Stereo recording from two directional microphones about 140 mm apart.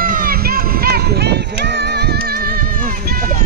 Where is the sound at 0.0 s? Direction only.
85° right.